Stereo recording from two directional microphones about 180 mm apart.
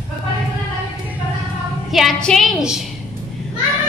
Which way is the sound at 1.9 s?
Centre (ahead or behind).